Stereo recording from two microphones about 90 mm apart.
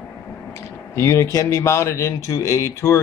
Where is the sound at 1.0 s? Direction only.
35° left (ahead or behind).